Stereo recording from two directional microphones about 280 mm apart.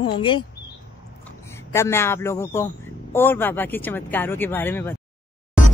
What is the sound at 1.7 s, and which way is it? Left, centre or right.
Speech, centre.